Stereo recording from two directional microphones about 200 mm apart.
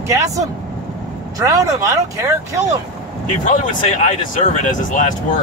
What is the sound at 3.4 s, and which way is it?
Speech, 35° left (ahead or behind).